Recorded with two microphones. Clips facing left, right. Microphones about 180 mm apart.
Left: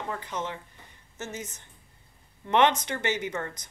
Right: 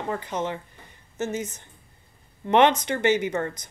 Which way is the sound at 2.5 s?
60° right (ahead or behind).